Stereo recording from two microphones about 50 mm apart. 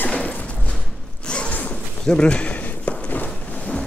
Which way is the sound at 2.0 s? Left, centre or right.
Left.